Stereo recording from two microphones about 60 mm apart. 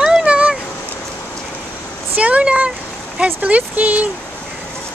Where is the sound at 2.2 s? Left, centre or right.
Right.